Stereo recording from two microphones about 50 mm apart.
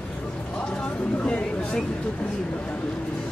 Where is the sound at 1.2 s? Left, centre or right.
Left.